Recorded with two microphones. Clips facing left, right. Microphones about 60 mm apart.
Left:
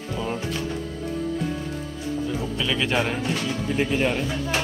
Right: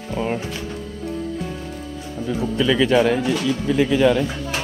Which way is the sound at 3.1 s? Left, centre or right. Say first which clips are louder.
Right 6 dB; right.